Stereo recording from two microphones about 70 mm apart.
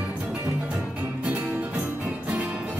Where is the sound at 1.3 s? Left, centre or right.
Right.